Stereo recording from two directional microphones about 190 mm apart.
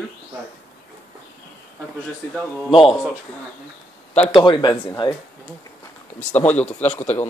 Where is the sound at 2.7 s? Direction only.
30° left (ahead or behind).